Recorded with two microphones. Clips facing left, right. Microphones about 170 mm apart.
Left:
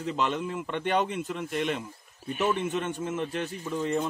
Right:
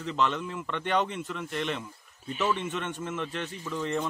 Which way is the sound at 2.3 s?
50° left (ahead or behind).